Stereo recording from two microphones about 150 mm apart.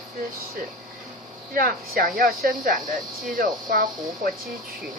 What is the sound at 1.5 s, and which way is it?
Speech, 70° right (ahead or behind).